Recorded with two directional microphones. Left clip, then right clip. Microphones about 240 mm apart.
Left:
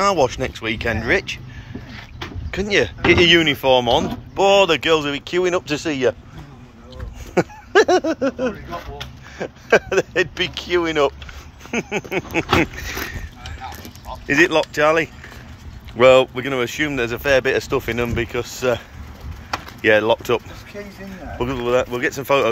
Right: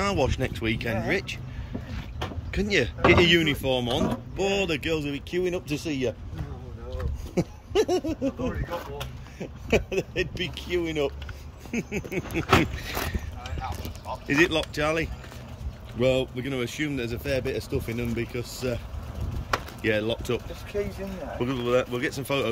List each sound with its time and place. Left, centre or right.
0.0 s speech: centre
2.5 s speech: centre
7.3 s a sound: centre
8.1 s speech: centre
14.2 s speech: centre
19.8 s speech: centre
20.7 s speech: right
21.4 s speech: centre